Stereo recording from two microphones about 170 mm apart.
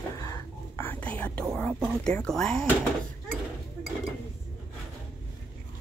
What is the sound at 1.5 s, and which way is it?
Speech, 5° left (ahead or behind).